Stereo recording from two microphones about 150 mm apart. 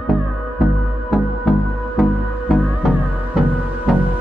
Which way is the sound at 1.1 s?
Centre (ahead or behind).